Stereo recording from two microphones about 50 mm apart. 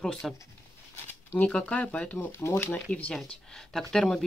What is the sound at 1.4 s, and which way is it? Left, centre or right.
Speech, left.